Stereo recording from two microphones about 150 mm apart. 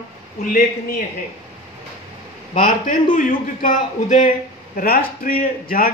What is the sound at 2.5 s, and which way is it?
A man's voice, 60° left (ahead or behind).